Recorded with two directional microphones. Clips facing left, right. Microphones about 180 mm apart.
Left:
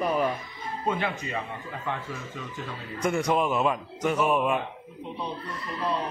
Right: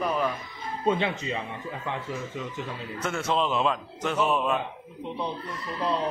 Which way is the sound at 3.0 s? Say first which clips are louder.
Left 3 dB; 15° left (ahead or behind).